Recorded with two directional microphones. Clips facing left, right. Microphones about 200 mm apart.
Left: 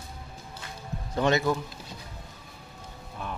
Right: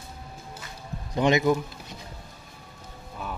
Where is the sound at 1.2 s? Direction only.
15° right (ahead or behind).